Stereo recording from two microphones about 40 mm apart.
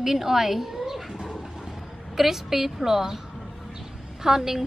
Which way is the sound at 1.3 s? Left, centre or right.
Centre.